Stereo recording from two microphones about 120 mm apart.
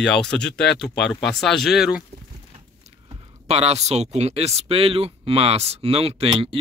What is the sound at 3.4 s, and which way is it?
Speech, 60° right (ahead or behind).